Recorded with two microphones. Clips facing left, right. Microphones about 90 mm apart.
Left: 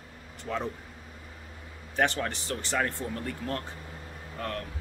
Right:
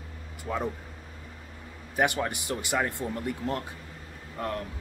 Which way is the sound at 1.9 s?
15° right (ahead or behind).